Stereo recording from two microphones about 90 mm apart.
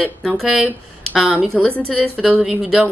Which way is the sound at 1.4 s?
5° left (ahead or behind).